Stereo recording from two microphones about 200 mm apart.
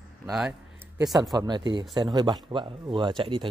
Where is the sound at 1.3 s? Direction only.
20° right (ahead or behind).